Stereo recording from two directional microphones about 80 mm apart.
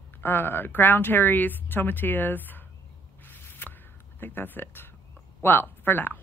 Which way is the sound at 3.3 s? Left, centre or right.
Left.